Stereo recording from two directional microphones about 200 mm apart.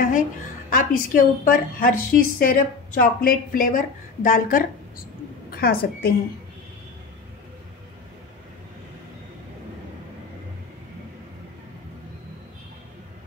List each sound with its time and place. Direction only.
0.7 s a woman's voice: 45° left (ahead or behind)